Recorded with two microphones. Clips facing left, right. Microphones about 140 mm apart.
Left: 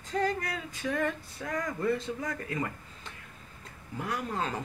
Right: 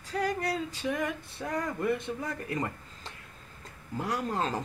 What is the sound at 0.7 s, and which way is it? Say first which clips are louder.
Speech: left 1 dB; 15° right (ahead or behind).